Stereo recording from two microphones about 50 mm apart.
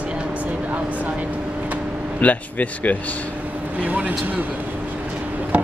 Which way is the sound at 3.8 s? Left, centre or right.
Right.